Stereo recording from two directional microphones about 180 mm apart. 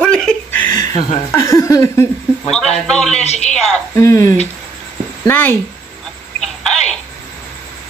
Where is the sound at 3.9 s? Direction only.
15° left (ahead or behind).